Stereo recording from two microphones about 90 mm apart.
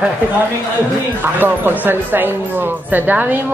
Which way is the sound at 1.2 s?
20° right (ahead or behind).